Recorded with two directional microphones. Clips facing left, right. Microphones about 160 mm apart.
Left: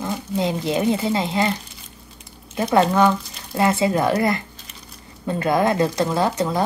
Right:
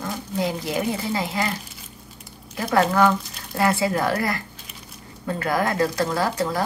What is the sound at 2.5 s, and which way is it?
Speech, 25° left (ahead or behind).